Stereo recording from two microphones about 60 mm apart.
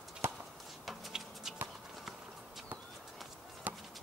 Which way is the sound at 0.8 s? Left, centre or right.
Centre.